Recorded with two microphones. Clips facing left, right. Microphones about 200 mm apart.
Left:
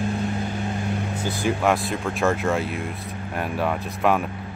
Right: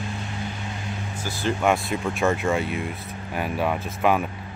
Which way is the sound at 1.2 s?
20° left (ahead or behind).